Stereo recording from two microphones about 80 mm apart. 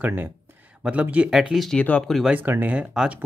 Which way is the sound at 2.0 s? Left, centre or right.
Centre.